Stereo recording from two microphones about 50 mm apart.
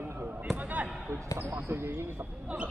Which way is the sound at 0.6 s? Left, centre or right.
Right.